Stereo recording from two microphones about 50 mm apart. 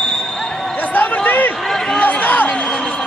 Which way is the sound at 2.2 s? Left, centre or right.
Left.